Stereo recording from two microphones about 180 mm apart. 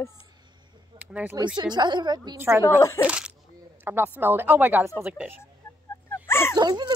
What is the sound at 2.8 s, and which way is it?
Speech, 15° left (ahead or behind).